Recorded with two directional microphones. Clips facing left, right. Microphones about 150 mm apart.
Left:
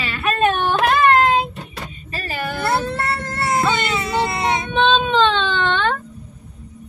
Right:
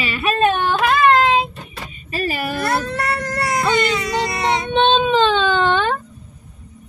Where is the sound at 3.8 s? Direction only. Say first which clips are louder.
Right 1 dB; 25° left (ahead or behind).